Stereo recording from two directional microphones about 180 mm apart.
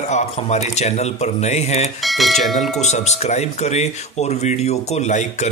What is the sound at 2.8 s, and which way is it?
Speech, 40° left (ahead or behind).